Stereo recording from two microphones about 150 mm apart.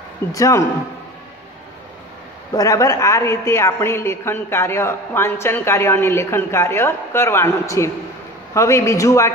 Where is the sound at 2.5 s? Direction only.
25° left (ahead or behind).